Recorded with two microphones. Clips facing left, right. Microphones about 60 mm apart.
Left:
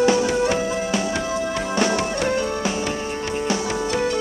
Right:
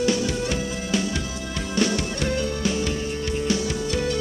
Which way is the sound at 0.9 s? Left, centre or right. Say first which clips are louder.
Left 2 dB; centre.